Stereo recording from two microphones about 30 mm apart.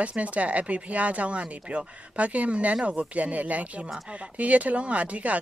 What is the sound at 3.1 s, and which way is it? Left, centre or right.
Speech, right.